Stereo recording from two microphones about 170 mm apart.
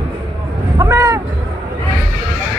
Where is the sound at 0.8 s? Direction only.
20° right (ahead or behind).